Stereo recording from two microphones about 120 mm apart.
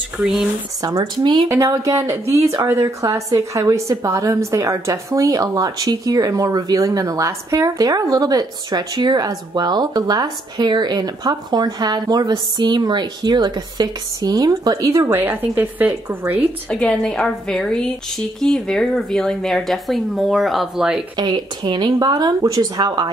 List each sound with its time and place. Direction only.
0.2 s speech: 5° right (ahead or behind)
0.8 s a woman's voice: 35° right (ahead or behind)
1.5 s a woman's voice: 25° right (ahead or behind)
15.1 s speech: 15° right (ahead or behind)
16.8 s speech: 5° left (ahead or behind)
21.2 s a woman's voice: 40° right (ahead or behind)